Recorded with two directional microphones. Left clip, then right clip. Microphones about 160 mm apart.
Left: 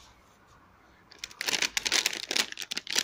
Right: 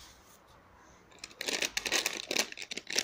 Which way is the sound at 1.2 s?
20° left (ahead or behind).